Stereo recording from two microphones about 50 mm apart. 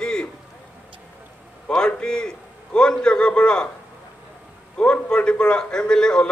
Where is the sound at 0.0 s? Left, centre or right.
Centre.